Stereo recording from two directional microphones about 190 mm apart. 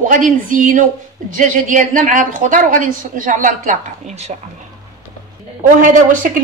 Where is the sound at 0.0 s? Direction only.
45° right (ahead or behind).